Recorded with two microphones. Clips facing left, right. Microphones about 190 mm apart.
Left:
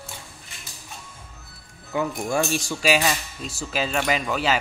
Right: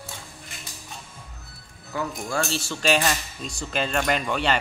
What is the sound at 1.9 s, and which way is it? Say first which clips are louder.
Speech: left 4 dB; 15° left (ahead or behind).